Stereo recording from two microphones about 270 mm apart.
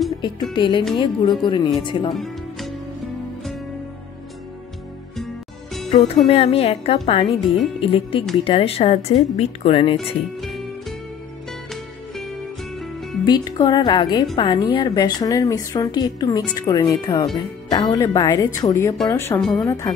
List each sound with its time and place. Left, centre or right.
0.2 s a woman's voice: centre
2.1 s music: centre
5.9 s a woman's voice: centre
9.9 s speech: centre
13.2 s a woman's voice: centre